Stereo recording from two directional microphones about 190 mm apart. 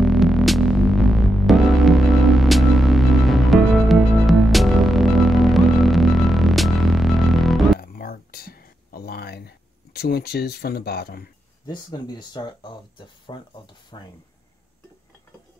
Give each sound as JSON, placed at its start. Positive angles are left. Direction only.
{"t": 0.0, "sound": "music", "side_deg": 0}
{"t": 7.8, "sound": "a sound", "side_deg": 50}
{"t": 11.6, "sound": "speech", "side_deg": 20}